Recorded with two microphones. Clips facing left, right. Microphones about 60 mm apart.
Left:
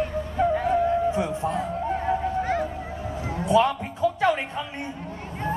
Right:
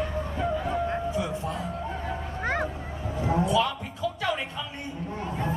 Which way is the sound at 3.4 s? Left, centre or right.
Left.